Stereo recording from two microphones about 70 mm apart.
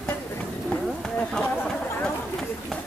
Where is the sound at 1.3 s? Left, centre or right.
Centre.